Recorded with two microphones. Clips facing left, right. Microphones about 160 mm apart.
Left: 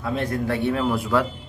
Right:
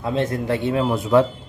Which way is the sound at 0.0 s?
20° right (ahead or behind).